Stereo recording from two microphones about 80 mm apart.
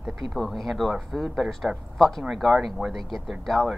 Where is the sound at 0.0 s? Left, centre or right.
Centre.